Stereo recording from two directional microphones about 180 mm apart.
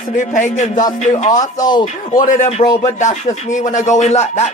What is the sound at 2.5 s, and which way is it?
Speech, 25° left (ahead or behind).